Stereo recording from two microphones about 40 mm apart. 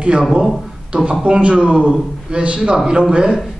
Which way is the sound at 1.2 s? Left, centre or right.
Right.